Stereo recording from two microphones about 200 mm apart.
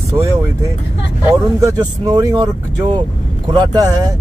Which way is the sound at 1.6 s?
15° right (ahead or behind).